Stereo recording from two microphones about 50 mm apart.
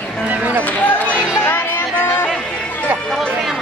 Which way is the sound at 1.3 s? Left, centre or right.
Left.